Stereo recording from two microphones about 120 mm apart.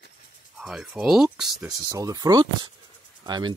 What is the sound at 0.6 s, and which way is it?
Speech, 5° right (ahead or behind).